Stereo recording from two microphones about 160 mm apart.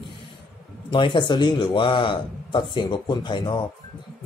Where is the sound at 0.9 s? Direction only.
30° left (ahead or behind).